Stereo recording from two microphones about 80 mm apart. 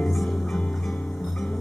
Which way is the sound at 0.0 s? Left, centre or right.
Centre.